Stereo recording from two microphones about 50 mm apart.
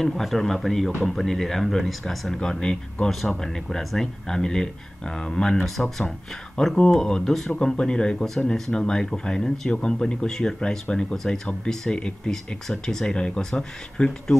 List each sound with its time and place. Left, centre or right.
0.0 s speech: centre
2.6 s speech: centre
3.1 s speech: centre